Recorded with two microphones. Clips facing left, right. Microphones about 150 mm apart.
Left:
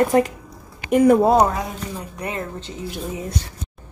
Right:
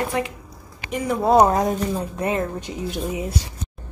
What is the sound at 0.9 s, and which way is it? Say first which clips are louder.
Speech: left 11 dB; 55° left (ahead or behind).